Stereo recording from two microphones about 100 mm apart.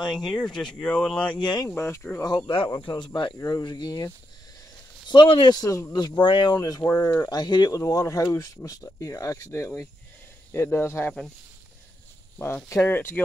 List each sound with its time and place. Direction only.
0.1 s speech: 5° left (ahead or behind)
1.3 s speech: 45° left (ahead or behind)
1.7 s speech: 30° left (ahead or behind)
2.2 s speech: 45° left (ahead or behind)
5.9 s speech: 45° left (ahead or behind)
6.8 s speech: 25° left (ahead or behind)
12.4 s speech: 25° left (ahead or behind)